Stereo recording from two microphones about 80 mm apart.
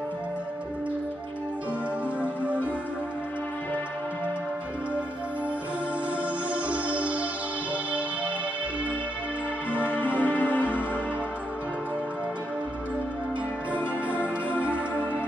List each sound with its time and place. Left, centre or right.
2.2 s music: centre
6.5 s music: centre
9.8 s music: left
14.7 s music: left